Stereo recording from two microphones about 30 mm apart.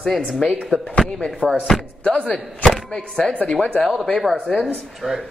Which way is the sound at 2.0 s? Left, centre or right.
Left.